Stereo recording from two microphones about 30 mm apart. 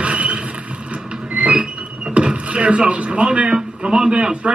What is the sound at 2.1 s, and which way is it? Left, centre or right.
A man's voice, right.